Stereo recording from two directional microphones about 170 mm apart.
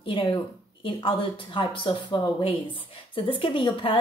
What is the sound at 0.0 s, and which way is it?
Speech, 30° left (ahead or behind).